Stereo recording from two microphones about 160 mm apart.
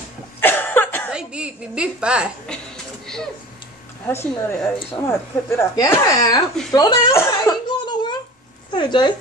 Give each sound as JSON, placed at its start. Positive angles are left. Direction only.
{"t": 0.4, "sound": "cough", "side_deg": 10}
{"t": 1.1, "sound": "a sound", "side_deg": -5}
{"t": 4.1, "sound": "speech", "side_deg": 15}
{"t": 6.7, "sound": "chuckle", "side_deg": 25}
{"t": 8.7, "sound": "speech", "side_deg": 30}